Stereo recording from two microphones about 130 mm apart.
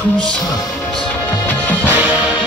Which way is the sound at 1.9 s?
15° right (ahead or behind).